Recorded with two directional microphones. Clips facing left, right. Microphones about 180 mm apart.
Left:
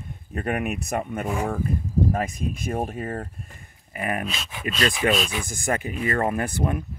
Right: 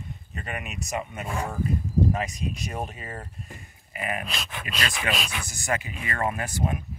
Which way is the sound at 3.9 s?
50° left (ahead or behind).